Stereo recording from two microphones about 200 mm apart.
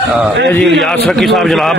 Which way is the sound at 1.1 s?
Centre (ahead or behind).